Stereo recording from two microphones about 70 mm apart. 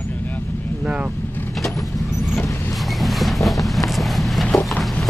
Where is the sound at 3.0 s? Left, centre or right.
Centre.